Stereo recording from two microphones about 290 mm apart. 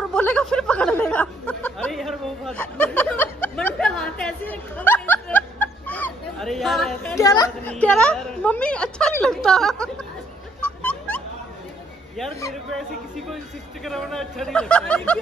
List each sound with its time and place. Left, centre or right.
0.1 s speech: centre
7.2 s a woman's voice: centre
10.6 s music: centre
13.8 s a woman's voice: centre